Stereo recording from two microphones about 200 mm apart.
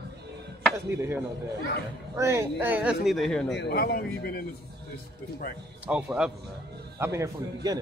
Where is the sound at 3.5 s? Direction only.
55° left (ahead or behind).